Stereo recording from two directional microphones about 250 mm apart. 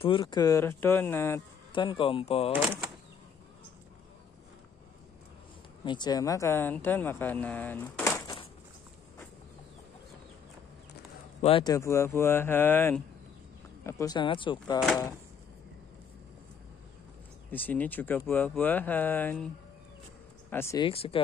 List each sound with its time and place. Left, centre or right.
0.0 s speech: centre
2.5 s speech: centre
5.9 s speech: centre
11.4 s speech: centre
17.5 s speech: centre; by 21.2 s left